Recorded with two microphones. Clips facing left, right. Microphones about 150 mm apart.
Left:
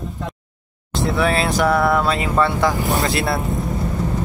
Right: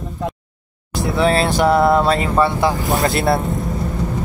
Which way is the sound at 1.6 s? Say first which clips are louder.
Right 4 dB; 25° right (ahead or behind).